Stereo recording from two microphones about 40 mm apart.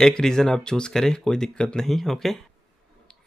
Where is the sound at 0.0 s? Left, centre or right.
Centre.